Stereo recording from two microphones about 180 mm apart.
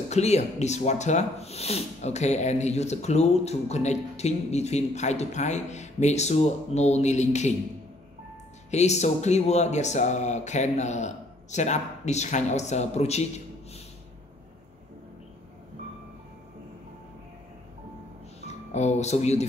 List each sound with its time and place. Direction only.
0.1 s speech: 40° left (ahead or behind)
8.6 s speech: 40° left (ahead or behind)
18.7 s speech: 40° left (ahead or behind)